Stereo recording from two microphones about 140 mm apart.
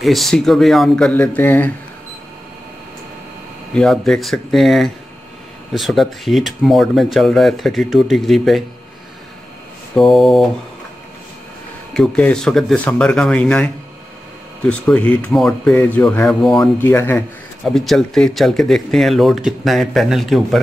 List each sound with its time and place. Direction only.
0.0 s speech: centre (ahead or behind)
3.7 s speech: centre (ahead or behind)
9.9 s speech: centre (ahead or behind)
11.9 s speech: 5° left (ahead or behind)
14.7 s speech: 10° left (ahead or behind)
17.6 s speech: centre (ahead or behind)